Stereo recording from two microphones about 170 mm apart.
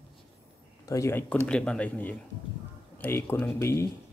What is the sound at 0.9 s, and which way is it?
Speech, 15° left (ahead or behind).